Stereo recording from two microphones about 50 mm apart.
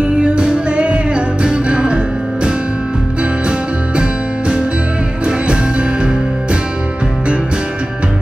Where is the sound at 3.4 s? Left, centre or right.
Centre.